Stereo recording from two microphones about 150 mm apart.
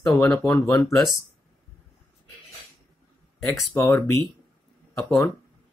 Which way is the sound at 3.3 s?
Centre (ahead or behind).